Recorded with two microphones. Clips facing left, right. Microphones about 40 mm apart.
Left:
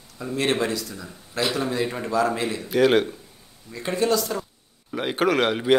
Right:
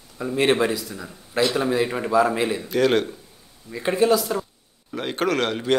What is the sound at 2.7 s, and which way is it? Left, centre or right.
Speech, centre.